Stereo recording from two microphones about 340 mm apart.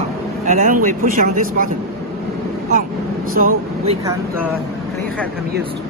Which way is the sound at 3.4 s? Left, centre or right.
Right.